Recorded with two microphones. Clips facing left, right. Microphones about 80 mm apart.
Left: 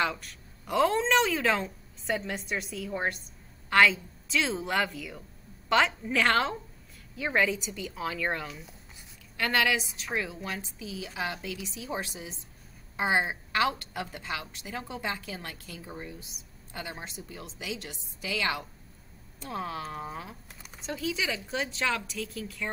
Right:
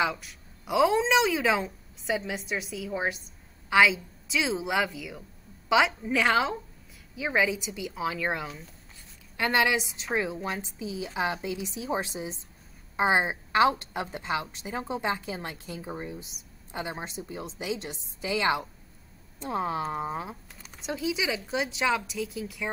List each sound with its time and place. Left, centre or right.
0.0 s a woman's voice: centre
9.7 s a woman's voice: right
20.6 s a sound: centre
21.0 s a woman's voice: centre
22.0 s a woman's voice: centre